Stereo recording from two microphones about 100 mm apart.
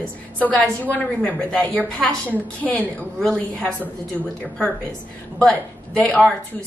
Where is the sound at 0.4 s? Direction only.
15° left (ahead or behind).